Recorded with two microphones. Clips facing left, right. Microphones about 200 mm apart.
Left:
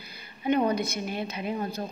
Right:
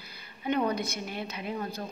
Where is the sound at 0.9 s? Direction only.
20° left (ahead or behind).